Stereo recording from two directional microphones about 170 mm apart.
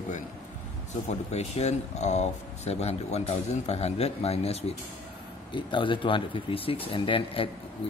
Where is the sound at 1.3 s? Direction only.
40° left (ahead or behind).